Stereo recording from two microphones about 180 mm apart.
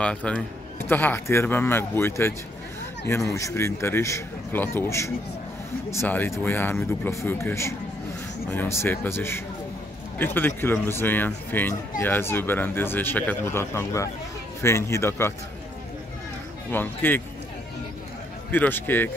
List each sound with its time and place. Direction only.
0.0 s speech: 5° left (ahead or behind)
16.7 s speech: 10° left (ahead or behind)
18.5 s speech: 10° left (ahead or behind)